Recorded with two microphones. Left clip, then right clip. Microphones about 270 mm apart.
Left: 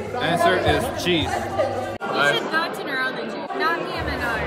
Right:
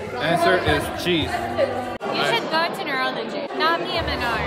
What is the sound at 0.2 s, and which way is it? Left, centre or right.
Speech, centre.